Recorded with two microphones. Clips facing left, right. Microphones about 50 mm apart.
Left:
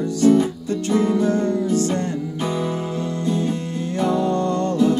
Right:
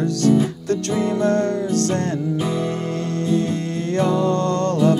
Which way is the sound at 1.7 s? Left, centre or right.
Centre.